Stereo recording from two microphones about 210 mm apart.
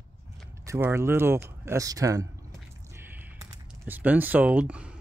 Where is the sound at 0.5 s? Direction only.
10° right (ahead or behind).